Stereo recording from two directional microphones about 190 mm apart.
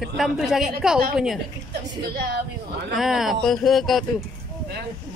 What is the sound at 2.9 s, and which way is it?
Speech, centre (ahead or behind).